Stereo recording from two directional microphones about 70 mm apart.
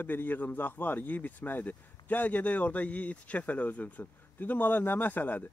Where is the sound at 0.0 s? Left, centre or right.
Left.